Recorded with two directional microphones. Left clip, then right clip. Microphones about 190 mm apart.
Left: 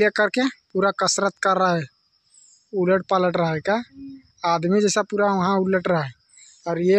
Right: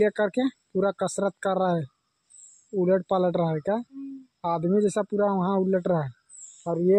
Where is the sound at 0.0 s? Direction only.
10° left (ahead or behind).